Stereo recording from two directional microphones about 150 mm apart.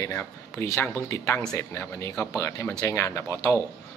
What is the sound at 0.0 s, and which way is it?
Speech, 15° left (ahead or behind).